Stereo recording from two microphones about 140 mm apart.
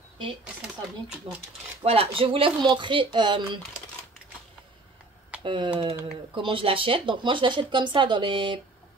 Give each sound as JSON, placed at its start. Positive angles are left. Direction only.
{"t": 1.9, "sound": "speech", "side_deg": -40}
{"t": 5.4, "sound": "speech", "side_deg": -35}